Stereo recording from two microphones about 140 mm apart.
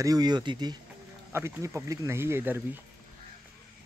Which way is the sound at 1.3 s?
20° right (ahead or behind).